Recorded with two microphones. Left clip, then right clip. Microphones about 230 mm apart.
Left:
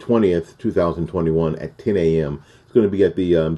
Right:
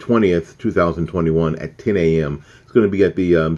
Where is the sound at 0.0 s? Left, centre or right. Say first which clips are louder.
Right 1 dB; centre.